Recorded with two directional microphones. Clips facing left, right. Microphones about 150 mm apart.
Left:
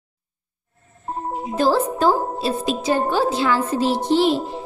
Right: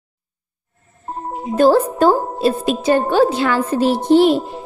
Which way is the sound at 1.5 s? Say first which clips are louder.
Right 6 dB; 55° right (ahead or behind).